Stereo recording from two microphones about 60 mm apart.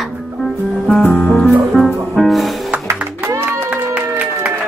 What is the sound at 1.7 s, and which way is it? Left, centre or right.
Music, centre.